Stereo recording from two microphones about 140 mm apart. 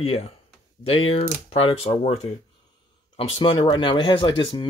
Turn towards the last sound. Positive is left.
turn(degrees=35)  # may be behind; listen again after turning